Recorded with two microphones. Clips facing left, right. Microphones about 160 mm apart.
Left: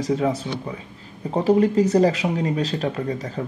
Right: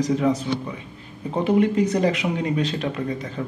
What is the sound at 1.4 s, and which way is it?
Speech, 35° left (ahead or behind).